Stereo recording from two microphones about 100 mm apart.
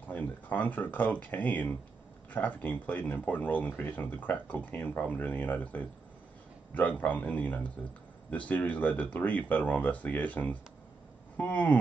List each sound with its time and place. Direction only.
0.1 s speech: 15° left (ahead or behind)